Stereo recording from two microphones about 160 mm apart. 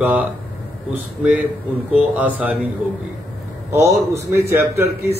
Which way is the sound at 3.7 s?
15° right (ahead or behind).